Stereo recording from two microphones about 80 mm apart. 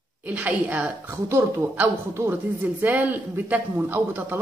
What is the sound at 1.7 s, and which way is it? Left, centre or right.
Speech, right.